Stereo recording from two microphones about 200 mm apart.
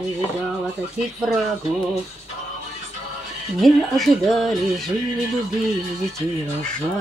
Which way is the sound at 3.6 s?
Centre (ahead or behind).